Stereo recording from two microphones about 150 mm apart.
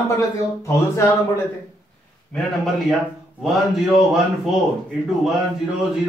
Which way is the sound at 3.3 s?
Centre (ahead or behind).